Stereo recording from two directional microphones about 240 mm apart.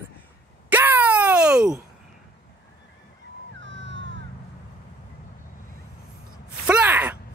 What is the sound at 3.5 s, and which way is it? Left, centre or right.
Music, right.